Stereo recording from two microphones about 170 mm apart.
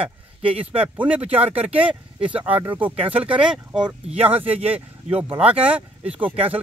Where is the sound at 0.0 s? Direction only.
30° right (ahead or behind).